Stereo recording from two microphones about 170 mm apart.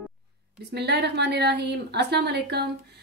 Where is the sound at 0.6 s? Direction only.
80° right.